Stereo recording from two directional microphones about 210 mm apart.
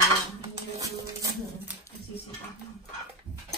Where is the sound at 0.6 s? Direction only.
15° right (ahead or behind).